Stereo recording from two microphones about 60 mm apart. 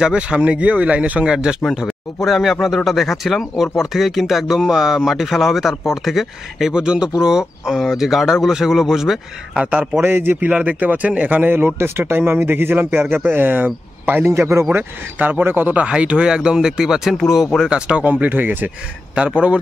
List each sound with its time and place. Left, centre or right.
0.0 s speech: centre
1.6 s speech: centre
6.7 s speech: centre
9.6 s speech: right
10.0 s speech: right
10.5 s a man's voice: right
14.3 s speech: right
14.7 s speech: right
15.8 s speech: centre
17.6 s speech: centre; by 18.7 s right
19.1 s speech: right